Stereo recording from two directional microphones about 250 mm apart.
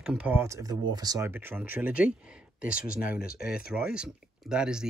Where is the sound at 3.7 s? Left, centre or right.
Centre.